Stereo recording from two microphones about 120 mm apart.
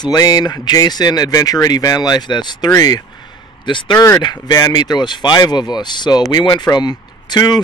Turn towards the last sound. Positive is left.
turn(degrees=35)  # may be behind; listen again after turning